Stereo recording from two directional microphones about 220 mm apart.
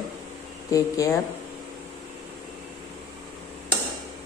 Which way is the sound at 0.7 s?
15° left (ahead or behind).